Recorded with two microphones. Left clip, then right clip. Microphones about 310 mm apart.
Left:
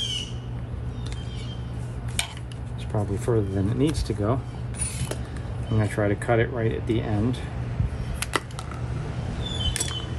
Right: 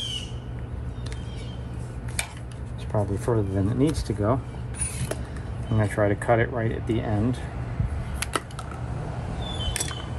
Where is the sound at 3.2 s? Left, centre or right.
Centre.